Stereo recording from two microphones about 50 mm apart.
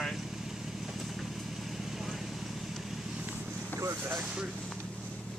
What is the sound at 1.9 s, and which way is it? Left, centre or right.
Vehicle, centre.